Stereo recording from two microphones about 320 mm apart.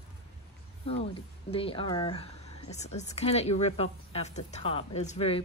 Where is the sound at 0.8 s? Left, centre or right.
Centre.